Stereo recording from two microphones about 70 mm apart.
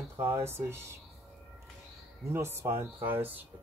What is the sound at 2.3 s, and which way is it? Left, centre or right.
Speech, right.